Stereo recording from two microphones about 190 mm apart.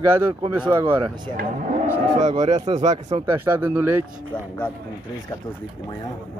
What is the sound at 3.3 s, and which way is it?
Speech, 15° right (ahead or behind).